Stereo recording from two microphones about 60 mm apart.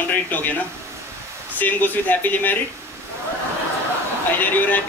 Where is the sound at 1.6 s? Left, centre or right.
Left.